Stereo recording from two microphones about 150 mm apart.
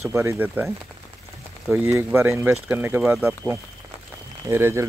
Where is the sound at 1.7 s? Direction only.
15° right (ahead or behind).